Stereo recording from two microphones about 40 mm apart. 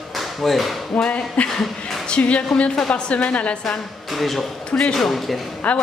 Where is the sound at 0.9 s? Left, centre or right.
Left.